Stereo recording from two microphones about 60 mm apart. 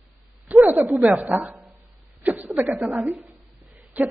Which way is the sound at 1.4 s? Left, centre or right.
Right.